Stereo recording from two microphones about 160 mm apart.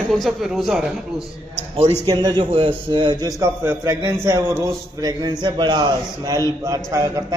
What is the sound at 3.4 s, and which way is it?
A man's voice, 15° right (ahead or behind).